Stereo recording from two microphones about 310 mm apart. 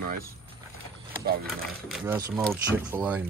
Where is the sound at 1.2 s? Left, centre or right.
Right.